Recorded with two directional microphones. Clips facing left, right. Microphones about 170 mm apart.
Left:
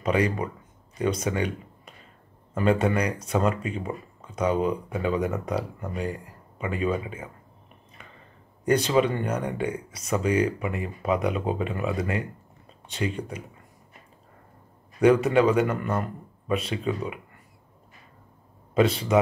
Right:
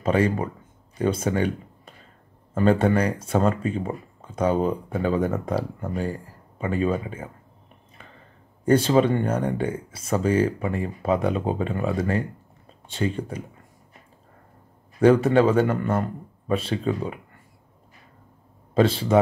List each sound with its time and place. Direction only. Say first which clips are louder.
0.0 s speech: right 3 dB; 30° right (ahead or behind)
2.5 s speech: right 3 dB; 30° right (ahead or behind)
8.6 s speech: right 3 dB; 30° right (ahead or behind)
15.0 s speech: right 2 dB; 30° right (ahead or behind)
18.8 s speech: right 2 dB; 30° right (ahead or behind)